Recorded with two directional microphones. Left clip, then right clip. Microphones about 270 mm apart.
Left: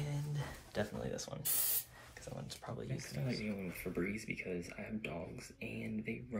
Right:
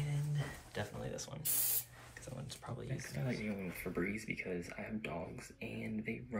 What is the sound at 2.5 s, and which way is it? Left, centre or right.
Speech, centre.